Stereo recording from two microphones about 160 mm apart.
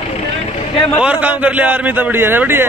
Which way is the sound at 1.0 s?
10° right (ahead or behind).